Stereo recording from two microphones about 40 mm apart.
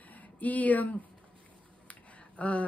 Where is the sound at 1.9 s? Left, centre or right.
Left.